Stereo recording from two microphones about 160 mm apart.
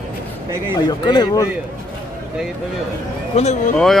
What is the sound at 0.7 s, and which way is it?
Speech, 25° left (ahead or behind).